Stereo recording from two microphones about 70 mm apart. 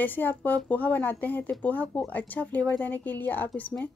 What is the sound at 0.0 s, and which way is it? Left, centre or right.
Speech, left.